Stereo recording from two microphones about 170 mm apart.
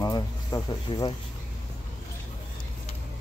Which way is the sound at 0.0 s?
20° left (ahead or behind).